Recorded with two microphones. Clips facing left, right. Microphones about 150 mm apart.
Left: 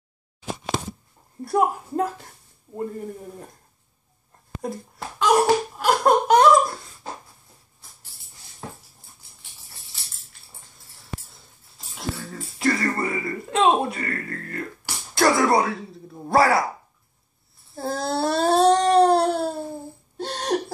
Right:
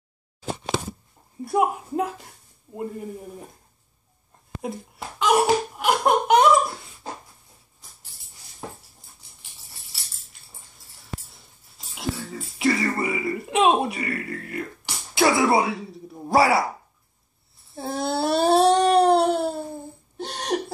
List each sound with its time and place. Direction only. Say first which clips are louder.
1.4 s speech: left 1 dB; 5° right (ahead or behind)
4.6 s a child's voice: left 1 dB; 5° right (ahead or behind)
5.8 s laughter: left 2 dB; 10° right (ahead or behind)
11.9 s a sound: right 2 dB; 10° right (ahead or behind)
15.1 s speech: even; 10° right (ahead or behind)
17.7 s a sound: even; centre (ahead or behind)
20.2 s hiccup: left 2 dB; centre (ahead or behind)